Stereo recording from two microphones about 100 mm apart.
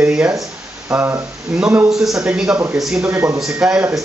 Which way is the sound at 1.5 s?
5° right (ahead or behind).